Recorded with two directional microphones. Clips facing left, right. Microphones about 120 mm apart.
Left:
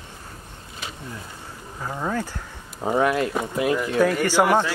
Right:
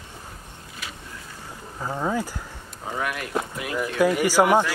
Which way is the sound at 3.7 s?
10° right (ahead or behind).